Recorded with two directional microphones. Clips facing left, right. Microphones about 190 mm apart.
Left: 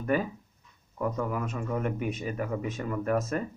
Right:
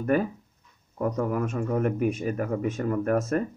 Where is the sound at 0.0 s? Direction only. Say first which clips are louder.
Right 4 dB; 50° right (ahead or behind).